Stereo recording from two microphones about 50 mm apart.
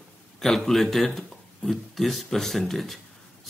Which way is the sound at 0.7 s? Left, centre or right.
Centre.